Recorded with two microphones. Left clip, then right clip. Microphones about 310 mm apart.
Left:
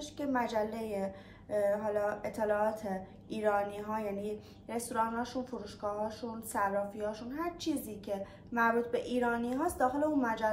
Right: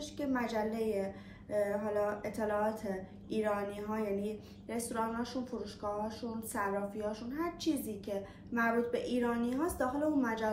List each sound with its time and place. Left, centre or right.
0.0 s a woman's voice: centre